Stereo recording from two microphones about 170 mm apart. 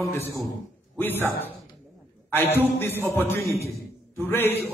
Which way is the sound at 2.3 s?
10° left (ahead or behind).